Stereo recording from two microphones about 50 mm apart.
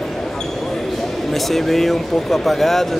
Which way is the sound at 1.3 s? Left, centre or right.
Centre.